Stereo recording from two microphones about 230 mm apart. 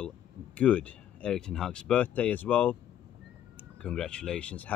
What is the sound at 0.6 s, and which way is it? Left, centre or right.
Speech, centre.